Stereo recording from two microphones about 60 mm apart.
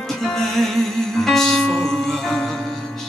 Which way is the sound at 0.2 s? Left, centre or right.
Centre.